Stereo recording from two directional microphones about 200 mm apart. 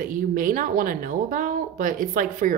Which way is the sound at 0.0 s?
40° right (ahead or behind).